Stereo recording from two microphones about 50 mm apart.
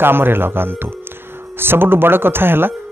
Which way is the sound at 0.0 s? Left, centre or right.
Right.